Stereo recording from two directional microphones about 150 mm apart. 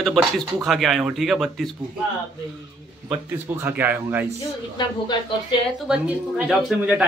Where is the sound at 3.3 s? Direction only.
15° right (ahead or behind).